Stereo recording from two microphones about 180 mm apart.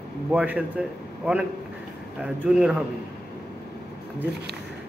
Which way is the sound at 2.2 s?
5° right (ahead or behind).